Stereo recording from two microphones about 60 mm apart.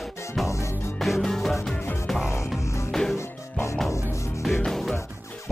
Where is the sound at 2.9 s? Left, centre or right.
Centre.